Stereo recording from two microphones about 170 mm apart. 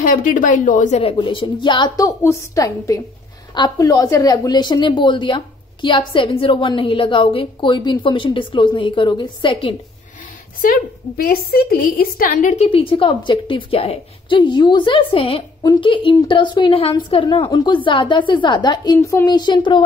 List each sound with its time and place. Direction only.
0.0 s a woman's voice: 50° left (ahead or behind)
1.1 s a woman's voice: 30° left (ahead or behind)
10.6 s a woman's voice: 60° left (ahead or behind); by 19.8 s 25° left (ahead or behind)